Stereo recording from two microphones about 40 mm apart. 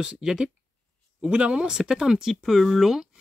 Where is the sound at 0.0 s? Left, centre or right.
Centre.